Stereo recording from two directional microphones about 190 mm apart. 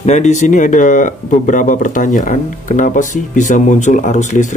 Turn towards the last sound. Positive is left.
turn(degrees=40)  # may be behind; listen again after turning